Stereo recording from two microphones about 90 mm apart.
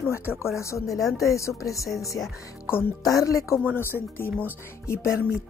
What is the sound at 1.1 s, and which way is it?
Speech, 35° left (ahead or behind).